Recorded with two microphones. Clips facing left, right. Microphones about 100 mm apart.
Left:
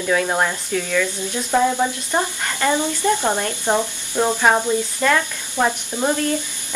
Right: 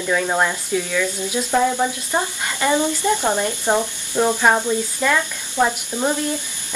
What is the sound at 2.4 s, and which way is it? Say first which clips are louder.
Speech: right 1 dB; 15° right (ahead or behind).